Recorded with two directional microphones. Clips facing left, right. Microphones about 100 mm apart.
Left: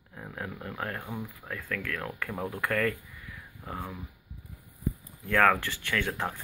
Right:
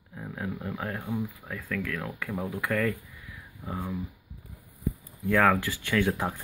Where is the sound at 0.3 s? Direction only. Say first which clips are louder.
Right 4 dB; 10° right (ahead or behind).